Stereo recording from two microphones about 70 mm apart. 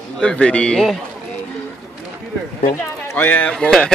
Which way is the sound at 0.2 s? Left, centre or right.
Centre.